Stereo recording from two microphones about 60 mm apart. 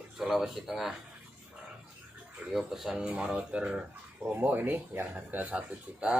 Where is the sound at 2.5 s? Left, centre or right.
Centre.